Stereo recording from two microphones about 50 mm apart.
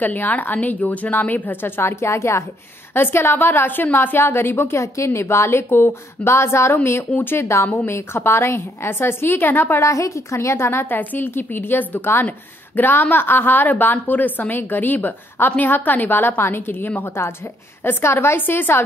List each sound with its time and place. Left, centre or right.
0.0 s a woman's voice: left
1.8 s a woman's voice: left
2.9 s a woman's voice: left
6.7 s a woman's voice: left
9.8 s a woman's voice: left